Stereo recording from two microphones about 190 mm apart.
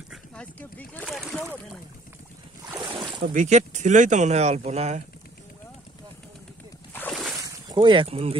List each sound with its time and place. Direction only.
0.1 s boat: 5° left (ahead or behind)
2.8 s boat: 25° right (ahead or behind)
3.3 s speech: 40° right (ahead or behind)
6.9 s a sound: 10° left (ahead or behind)
7.4 s speech: 20° right (ahead or behind)